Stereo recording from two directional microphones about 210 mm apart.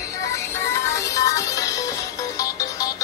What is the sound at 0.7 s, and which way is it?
Music, 15° left (ahead or behind).